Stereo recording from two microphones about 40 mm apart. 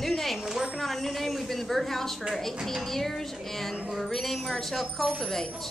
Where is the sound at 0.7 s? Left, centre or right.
Centre.